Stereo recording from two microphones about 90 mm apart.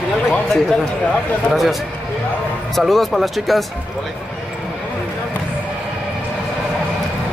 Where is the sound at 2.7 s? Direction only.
Centre (ahead or behind).